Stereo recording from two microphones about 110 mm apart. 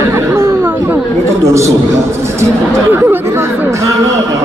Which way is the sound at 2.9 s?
20° right (ahead or behind).